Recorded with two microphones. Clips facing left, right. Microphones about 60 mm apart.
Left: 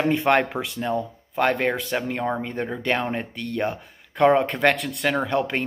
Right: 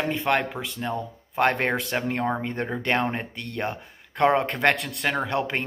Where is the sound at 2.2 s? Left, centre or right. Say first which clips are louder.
Left 1 dB; centre.